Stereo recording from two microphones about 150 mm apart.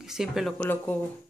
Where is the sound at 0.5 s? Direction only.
10° left (ahead or behind).